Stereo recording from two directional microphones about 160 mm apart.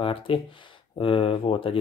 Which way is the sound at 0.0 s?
35° left (ahead or behind).